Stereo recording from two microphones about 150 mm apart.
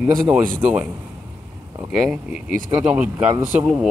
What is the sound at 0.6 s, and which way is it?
Speech, 10° right (ahead or behind).